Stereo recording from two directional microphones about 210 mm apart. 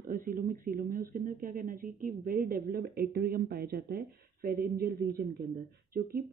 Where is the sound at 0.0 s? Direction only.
40° right (ahead or behind).